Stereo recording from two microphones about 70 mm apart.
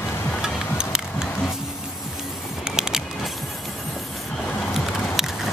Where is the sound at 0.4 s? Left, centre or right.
Centre.